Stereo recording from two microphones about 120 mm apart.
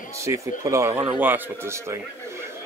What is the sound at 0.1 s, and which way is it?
Speech, 25° right (ahead or behind).